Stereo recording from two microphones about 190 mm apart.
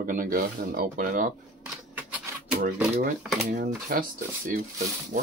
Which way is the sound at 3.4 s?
45° right (ahead or behind).